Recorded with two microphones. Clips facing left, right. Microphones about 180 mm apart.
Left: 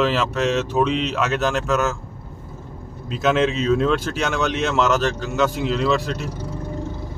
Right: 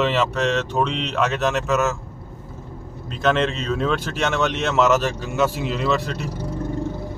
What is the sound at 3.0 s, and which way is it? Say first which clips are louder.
Speech: left 1 dB; 5° left (ahead or behind).